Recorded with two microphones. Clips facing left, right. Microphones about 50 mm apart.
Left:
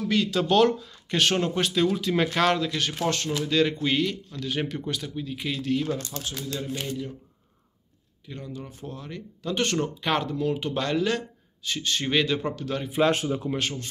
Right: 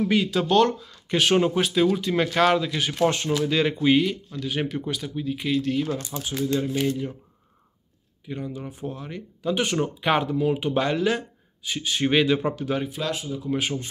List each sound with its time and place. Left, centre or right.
0.1 s speech: centre
8.3 s speech: centre
13.1 s speech: left
13.6 s speech: centre